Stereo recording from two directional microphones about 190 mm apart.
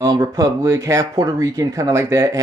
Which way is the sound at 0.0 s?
15° right (ahead or behind).